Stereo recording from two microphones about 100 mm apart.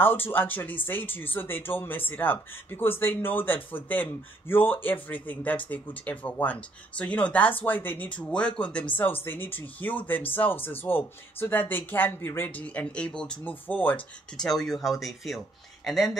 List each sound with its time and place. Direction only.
0.0 s speech: 20° left (ahead or behind)
14.3 s speech: 5° left (ahead or behind)